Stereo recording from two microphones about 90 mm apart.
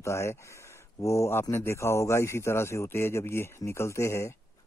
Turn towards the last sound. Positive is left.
turn(degrees=30)  # may be behind; listen again after turning